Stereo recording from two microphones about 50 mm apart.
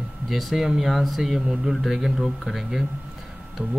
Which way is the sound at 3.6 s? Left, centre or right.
Right.